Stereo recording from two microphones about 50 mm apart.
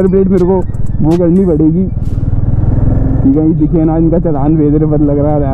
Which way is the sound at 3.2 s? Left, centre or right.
Centre.